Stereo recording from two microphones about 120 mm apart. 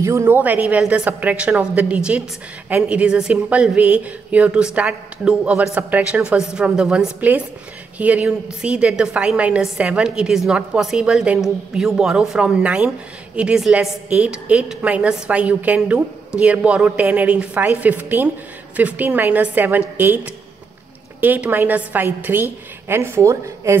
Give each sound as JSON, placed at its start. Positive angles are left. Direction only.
{"t": 0.0, "sound": "a woman's voice", "side_deg": -20}
{"t": 21.2, "sound": "a woman's voice", "side_deg": -15}